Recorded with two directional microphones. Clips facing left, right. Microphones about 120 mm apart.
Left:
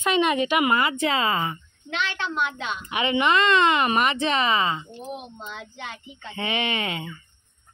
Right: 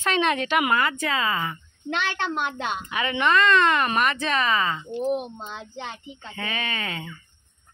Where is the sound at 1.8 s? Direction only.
45° right (ahead or behind).